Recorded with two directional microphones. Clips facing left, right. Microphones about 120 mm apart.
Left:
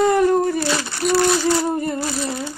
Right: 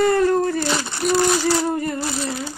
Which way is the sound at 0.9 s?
20° right (ahead or behind).